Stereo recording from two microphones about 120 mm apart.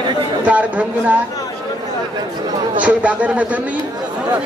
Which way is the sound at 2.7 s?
10° right (ahead or behind).